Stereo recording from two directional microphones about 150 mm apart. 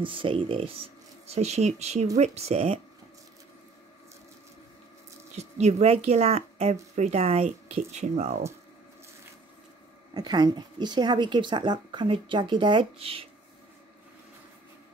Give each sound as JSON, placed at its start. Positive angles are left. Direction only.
{"t": 0.0, "sound": "speech", "side_deg": -35}
{"t": 5.3, "sound": "speech", "side_deg": -50}
{"t": 10.1, "sound": "speech", "side_deg": -30}